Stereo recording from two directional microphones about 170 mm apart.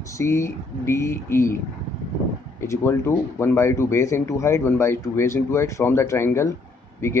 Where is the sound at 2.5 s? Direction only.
15° left (ahead or behind).